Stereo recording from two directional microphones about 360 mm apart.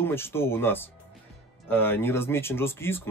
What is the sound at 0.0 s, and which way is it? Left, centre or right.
Speech, centre.